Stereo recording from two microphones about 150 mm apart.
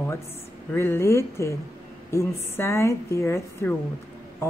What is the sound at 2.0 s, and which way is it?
A woman's voice, 20° left (ahead or behind).